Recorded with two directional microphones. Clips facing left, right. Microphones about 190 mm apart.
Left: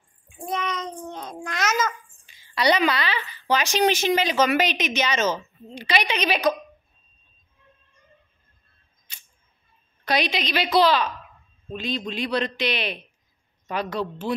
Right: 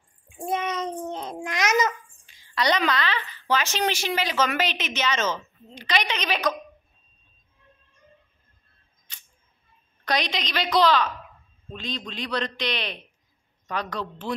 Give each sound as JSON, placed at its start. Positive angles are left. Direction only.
{"t": 0.5, "sound": "child singing", "side_deg": -25}
{"t": 2.2, "sound": "a woman's voice", "side_deg": 10}
{"t": 9.1, "sound": "camera", "side_deg": 10}
{"t": 10.0, "sound": "a woman's voice", "side_deg": 10}